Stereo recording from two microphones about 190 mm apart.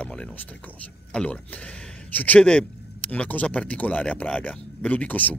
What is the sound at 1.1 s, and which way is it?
Speech, 5° left (ahead or behind).